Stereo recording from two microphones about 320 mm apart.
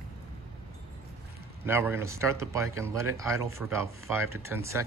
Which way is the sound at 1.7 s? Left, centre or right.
Centre.